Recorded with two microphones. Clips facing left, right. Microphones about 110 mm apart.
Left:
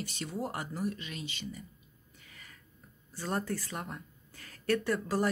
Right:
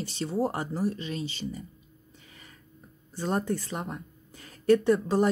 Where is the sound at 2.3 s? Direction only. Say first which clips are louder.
Right 2 dB; 25° right (ahead or behind).